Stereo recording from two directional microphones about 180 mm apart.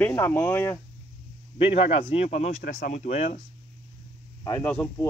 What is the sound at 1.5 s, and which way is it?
Speech, 30° left (ahead or behind).